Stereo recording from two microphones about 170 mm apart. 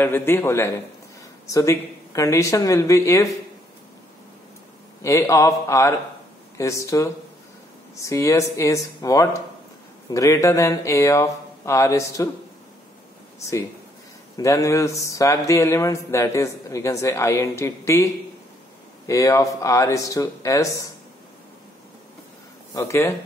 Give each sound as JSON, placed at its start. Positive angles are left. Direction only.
{"t": 0.0, "sound": "speech", "side_deg": 15}
{"t": 5.0, "sound": "speech", "side_deg": 15}
{"t": 14.3, "sound": "speech", "side_deg": 20}
{"t": 22.8, "sound": "speech", "side_deg": 15}